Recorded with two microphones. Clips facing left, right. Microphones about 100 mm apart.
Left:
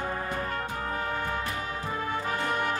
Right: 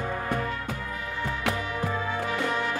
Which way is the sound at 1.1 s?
50° left (ahead or behind).